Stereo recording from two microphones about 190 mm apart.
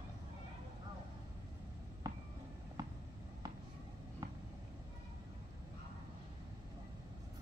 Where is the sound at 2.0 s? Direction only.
20° right (ahead or behind).